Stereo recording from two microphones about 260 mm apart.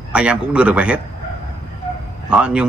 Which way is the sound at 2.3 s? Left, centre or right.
Centre.